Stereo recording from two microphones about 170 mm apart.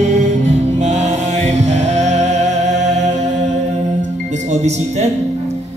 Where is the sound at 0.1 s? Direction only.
45° right (ahead or behind).